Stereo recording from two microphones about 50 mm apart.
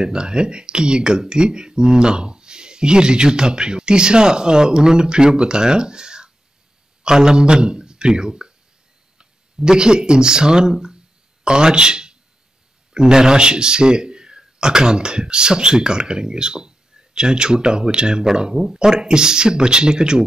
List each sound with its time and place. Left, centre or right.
0.0 s speech: centre